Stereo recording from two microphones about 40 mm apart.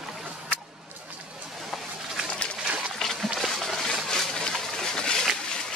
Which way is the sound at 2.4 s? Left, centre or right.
Left.